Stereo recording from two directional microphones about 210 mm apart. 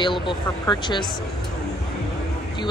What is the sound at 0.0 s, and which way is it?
Speech, 25° left (ahead or behind).